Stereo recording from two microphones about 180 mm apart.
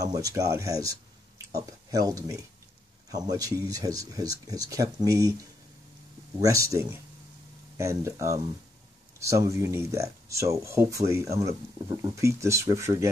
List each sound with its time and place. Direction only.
0.0 s speech: 20° right (ahead or behind)